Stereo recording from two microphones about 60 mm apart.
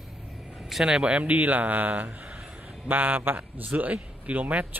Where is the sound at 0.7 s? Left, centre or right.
Centre.